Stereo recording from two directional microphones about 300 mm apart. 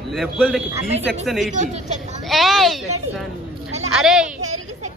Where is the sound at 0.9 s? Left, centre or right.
Right.